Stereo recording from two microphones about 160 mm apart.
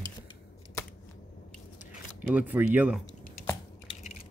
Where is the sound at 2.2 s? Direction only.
10° right (ahead or behind).